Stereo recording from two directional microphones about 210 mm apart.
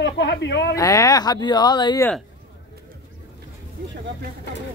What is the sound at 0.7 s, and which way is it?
Speech, 15° left (ahead or behind).